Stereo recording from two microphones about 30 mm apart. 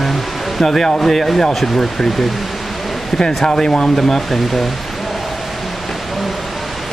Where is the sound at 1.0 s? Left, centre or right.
Centre.